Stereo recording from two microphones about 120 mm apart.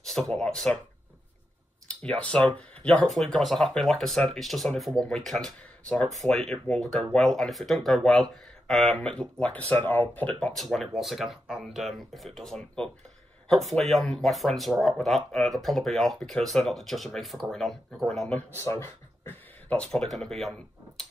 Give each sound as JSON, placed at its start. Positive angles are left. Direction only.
{"t": 0.0, "sound": "speech", "side_deg": 5}
{"t": 1.9, "sound": "speech", "side_deg": 10}
{"t": 18.6, "sound": "speech", "side_deg": 20}
{"t": 19.9, "sound": "speech", "side_deg": 5}